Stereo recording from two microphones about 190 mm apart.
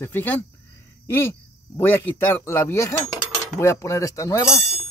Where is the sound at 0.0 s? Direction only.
10° left (ahead or behind).